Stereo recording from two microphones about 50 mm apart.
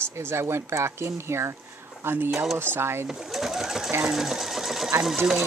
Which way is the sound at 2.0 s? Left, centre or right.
Right.